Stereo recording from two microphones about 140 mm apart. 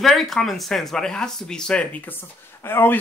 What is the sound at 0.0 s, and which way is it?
Speech, centre (ahead or behind).